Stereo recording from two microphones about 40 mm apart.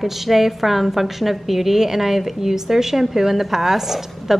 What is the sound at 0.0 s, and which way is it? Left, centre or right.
A woman's voice, centre.